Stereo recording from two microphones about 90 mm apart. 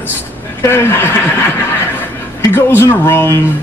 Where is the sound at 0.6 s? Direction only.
25° left (ahead or behind).